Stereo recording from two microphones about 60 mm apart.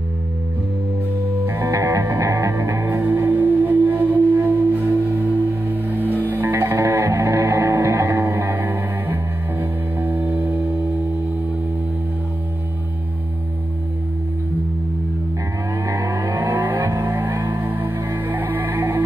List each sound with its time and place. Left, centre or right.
1.4 s music: right
1.7 s music: right
2.9 s singing bowl: right
8.2 s music: right
15.7 s vehicle: right